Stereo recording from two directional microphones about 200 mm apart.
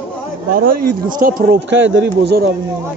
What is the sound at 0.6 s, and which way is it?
A man's voice, 45° right (ahead or behind).